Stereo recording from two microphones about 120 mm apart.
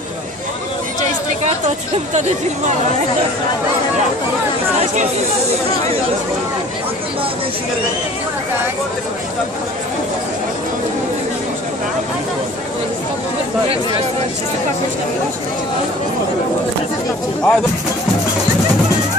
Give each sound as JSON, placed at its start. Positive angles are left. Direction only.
{"t": 2.1, "sound": "speech", "side_deg": -75}
{"t": 17.4, "sound": "speech", "side_deg": 10}